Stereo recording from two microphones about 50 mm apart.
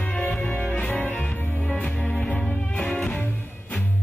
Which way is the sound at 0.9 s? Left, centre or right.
Left.